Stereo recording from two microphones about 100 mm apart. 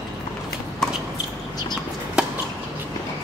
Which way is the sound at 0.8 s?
5° left (ahead or behind).